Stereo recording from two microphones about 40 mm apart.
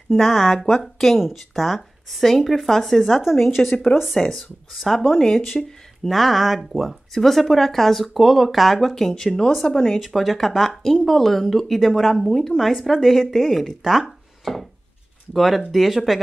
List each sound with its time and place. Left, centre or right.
0.1 s speech: centre
3.6 s a woman's voice: left
4.2 s speech: centre
8.9 s speech: centre
9.9 s speech: centre